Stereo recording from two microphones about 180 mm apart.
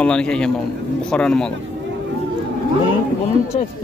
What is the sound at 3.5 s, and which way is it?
Speech, 40° left (ahead or behind).